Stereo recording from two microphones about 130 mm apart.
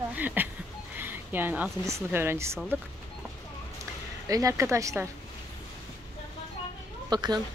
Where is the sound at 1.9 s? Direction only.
20° right (ahead or behind).